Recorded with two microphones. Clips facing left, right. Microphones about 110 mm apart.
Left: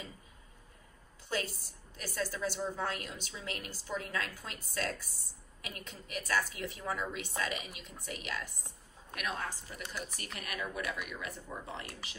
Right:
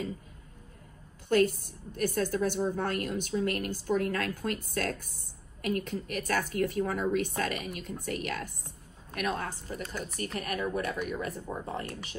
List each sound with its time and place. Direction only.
1.3 s a woman's voice: 55° right (ahead or behind)